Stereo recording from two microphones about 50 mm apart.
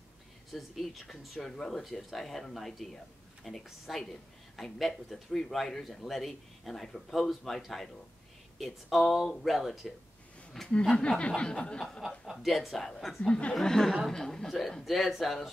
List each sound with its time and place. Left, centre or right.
0.5 s speech: centre
8.9 s a woman's voice: centre
11.0 s a sound: left
12.3 s a woman's voice: centre
13.3 s a sound: centre
13.6 s a woman's voice: centre